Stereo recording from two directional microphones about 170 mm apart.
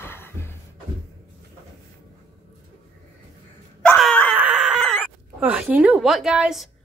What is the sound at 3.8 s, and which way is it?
Wail, 5° left (ahead or behind).